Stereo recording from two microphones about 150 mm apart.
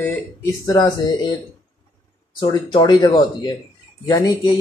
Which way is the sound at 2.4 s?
30° left (ahead or behind).